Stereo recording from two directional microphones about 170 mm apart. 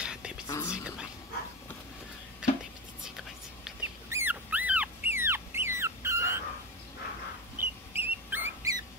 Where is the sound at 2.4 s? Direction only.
5° right (ahead or behind).